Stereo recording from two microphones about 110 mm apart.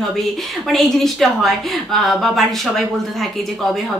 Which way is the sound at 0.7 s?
5° left (ahead or behind).